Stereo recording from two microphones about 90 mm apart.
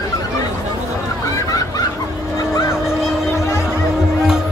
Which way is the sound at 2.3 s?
35° left (ahead or behind).